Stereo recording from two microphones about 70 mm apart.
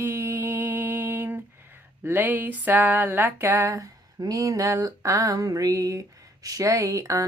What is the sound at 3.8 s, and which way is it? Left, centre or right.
Speech, right.